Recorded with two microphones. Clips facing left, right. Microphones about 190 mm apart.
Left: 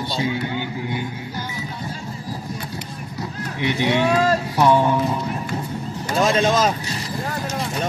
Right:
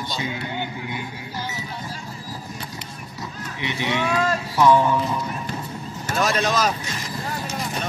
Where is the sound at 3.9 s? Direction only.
55° left (ahead or behind).